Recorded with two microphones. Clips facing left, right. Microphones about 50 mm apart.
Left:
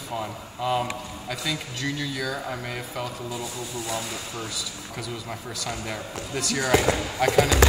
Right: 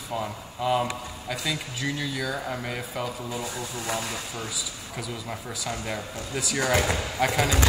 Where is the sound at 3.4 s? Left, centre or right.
Right.